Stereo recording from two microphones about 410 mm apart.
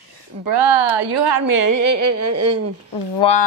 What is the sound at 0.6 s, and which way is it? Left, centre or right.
A woman's voice, right.